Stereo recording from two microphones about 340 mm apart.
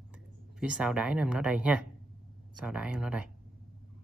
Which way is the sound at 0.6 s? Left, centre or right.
Centre.